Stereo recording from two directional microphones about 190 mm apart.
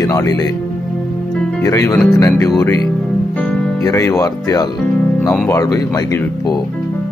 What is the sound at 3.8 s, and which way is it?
Speech, 15° left (ahead or behind).